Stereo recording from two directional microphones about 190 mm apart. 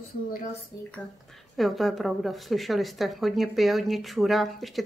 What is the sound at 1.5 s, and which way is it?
A woman's voice, centre (ahead or behind).